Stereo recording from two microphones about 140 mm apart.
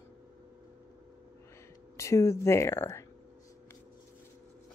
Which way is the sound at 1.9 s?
20° left (ahead or behind).